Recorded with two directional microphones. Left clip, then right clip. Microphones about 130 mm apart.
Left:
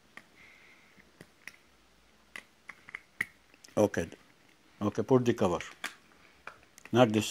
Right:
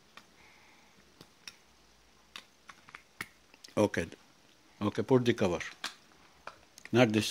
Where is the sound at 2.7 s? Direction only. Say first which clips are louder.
Left 6 dB; 10° left (ahead or behind).